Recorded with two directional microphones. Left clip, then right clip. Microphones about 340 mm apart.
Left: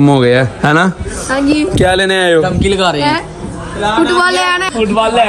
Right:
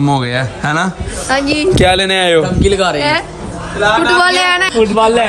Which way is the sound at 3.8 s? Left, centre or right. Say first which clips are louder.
Right 1 dB; centre.